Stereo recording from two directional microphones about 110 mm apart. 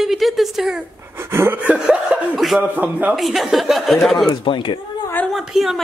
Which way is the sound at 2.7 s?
15° right (ahead or behind).